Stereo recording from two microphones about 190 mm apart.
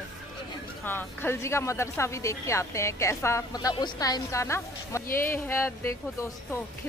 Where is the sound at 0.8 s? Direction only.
10° left (ahead or behind).